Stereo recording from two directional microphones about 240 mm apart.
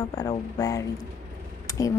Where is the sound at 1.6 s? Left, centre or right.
Centre.